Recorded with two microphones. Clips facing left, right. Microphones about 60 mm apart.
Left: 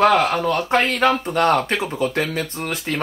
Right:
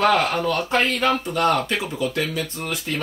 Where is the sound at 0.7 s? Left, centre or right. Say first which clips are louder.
Left 2 dB; left.